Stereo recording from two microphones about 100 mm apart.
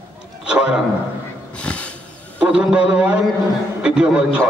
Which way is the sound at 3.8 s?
10° right (ahead or behind).